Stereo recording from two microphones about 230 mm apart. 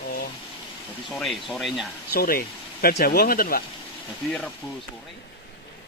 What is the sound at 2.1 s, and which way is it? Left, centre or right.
Speech, left.